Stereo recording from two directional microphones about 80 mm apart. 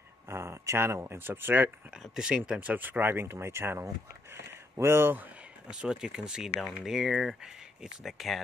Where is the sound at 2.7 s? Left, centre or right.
Right.